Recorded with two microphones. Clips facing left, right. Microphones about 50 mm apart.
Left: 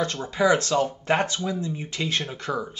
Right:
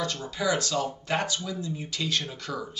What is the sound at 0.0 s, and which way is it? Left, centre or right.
A man's voice, left.